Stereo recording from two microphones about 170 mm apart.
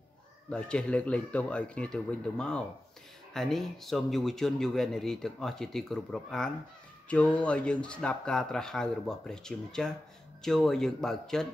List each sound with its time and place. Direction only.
0.5 s speech: 5° left (ahead or behind)